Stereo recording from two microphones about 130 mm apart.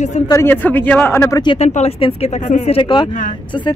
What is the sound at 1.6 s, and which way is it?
Speech, 55° left (ahead or behind).